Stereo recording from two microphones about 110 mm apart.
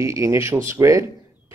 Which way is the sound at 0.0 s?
30° right (ahead or behind).